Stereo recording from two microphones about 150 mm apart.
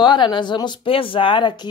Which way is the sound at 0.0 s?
30° left (ahead or behind).